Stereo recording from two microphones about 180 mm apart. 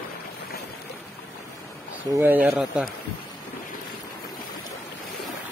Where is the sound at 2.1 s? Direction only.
10° right (ahead or behind).